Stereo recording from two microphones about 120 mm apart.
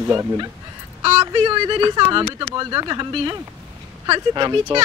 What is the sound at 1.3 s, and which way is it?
Speech, 45° right (ahead or behind).